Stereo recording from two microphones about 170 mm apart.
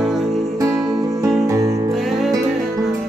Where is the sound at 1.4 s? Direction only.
20° right (ahead or behind).